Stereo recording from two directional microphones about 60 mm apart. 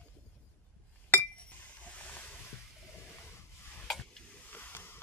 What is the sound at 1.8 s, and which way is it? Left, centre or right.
Ocean, left.